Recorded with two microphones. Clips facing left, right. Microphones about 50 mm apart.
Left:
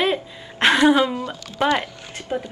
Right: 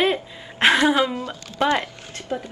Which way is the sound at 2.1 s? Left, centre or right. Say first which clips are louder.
Left 2 dB; left.